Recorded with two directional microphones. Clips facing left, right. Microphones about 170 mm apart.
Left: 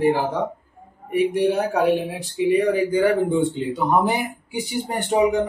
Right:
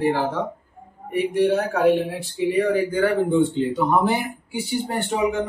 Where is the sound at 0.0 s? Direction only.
15° left (ahead or behind).